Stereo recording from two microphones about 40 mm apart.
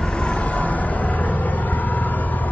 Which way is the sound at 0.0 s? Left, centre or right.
Left.